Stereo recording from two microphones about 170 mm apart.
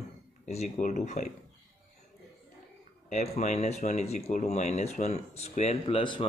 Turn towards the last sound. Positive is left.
turn(degrees=30)  # may be behind; listen again after turning